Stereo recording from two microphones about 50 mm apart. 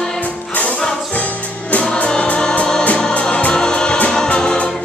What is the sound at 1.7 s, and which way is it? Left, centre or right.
Music, left.